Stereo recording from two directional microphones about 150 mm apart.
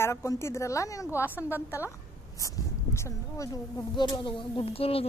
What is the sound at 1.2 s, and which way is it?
Speech, 10° right (ahead or behind).